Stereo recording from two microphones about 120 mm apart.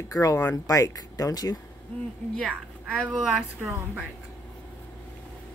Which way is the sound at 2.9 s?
Centre (ahead or behind).